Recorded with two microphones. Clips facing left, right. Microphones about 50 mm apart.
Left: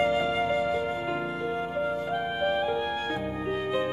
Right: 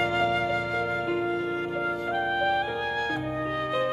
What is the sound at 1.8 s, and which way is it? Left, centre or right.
Music, right.